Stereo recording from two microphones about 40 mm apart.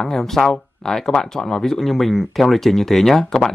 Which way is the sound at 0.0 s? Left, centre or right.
Centre.